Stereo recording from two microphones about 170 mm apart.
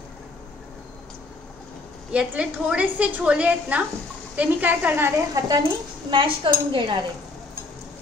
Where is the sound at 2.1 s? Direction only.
5° right (ahead or behind).